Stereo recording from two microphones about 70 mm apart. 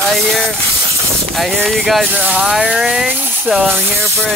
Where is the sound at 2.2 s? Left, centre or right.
Right.